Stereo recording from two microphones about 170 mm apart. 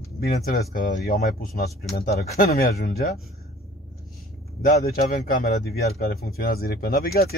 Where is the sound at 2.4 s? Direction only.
55° left (ahead or behind).